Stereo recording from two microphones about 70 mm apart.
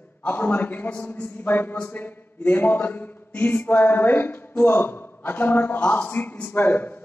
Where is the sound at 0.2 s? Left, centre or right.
Left.